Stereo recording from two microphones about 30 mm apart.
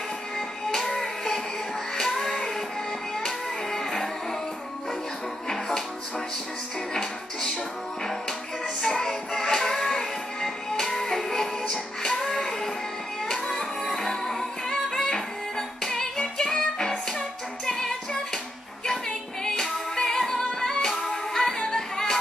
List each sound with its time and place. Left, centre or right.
0.7 s music: centre
5.5 s music: centre
6.9 s music: left
8.8 s music: centre